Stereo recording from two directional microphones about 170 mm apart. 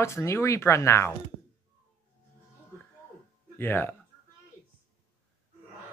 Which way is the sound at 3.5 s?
10° left (ahead or behind).